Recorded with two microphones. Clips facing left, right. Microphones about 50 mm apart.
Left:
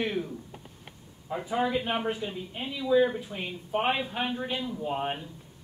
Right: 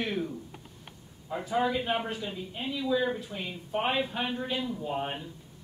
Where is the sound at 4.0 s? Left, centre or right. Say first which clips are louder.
Even; centre.